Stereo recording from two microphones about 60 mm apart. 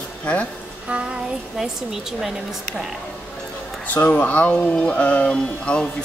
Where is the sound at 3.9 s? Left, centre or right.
Left.